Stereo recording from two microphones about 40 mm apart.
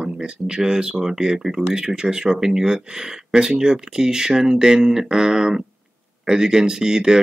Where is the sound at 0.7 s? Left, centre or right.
Right.